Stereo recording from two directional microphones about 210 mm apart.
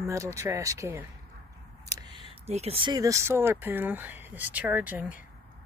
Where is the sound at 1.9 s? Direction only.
20° right (ahead or behind).